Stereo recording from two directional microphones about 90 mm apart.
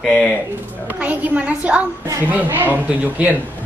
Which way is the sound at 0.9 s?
15° right (ahead or behind).